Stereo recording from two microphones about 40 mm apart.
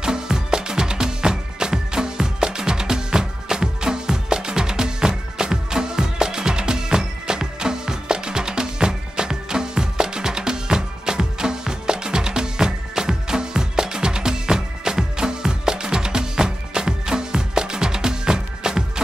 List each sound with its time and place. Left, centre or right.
0.0 s music: centre